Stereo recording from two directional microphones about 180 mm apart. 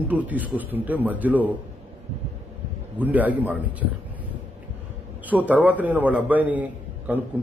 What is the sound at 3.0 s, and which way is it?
Speech, 10° right (ahead or behind).